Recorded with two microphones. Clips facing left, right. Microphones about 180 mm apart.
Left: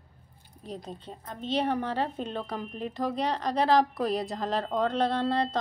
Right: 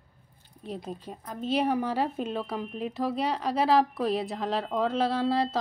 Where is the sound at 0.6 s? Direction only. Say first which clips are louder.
Right 3 dB; 5° right (ahead or behind).